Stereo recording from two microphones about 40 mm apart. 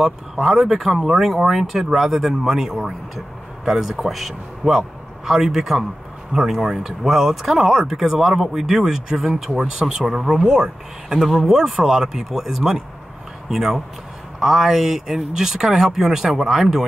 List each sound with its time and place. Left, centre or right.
0.0 s a man's voice: centre
8.8 s speech: right
11.2 s speech: centre